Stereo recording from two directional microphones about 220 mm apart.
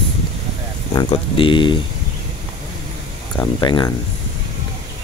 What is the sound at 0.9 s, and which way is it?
Speech, 20° left (ahead or behind).